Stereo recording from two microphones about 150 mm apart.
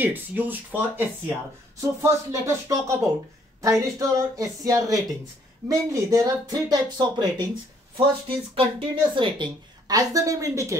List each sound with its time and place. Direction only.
0.0 s speech: 10° right (ahead or behind)